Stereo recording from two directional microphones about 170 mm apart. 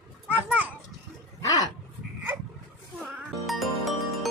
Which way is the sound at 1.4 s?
20° left (ahead or behind).